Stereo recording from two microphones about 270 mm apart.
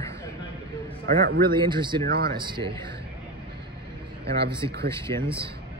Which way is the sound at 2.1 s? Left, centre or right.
Right.